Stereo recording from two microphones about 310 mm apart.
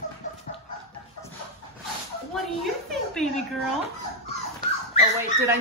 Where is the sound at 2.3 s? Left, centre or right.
Centre.